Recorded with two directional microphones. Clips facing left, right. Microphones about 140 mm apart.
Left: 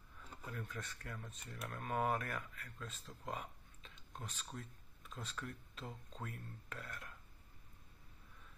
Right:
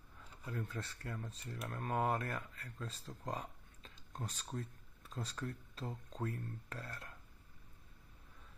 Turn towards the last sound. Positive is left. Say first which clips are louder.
# right 2 dB
turn(degrees=-35)  # may be behind; listen again after turning